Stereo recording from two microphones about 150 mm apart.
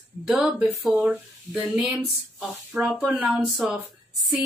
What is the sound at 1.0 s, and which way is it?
Speech, 10° right (ahead or behind).